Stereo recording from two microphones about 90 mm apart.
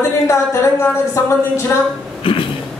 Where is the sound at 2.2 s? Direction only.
75° left (ahead or behind).